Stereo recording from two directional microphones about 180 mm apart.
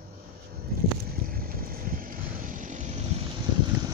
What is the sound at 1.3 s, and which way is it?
Vehicle, 55° right (ahead or behind).